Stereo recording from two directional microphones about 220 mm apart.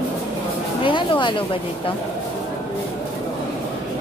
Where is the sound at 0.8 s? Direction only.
20° left (ahead or behind).